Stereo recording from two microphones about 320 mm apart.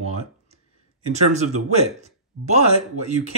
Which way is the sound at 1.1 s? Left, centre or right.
Right.